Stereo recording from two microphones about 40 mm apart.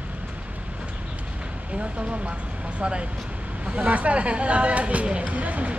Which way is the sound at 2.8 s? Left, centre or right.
Right.